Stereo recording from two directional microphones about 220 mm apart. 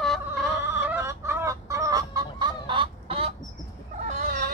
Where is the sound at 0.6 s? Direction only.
10° right (ahead or behind); by 4.5 s 40° right (ahead or behind).